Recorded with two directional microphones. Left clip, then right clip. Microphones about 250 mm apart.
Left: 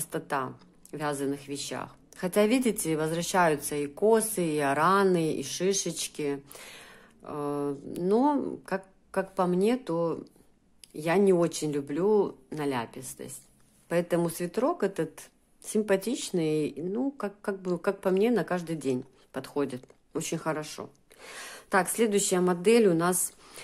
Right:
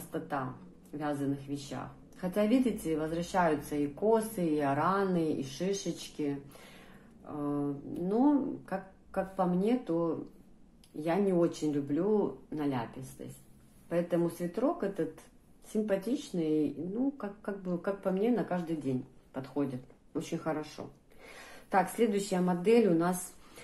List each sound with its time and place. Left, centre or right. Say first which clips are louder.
0.1 s speech: left 5 dB; left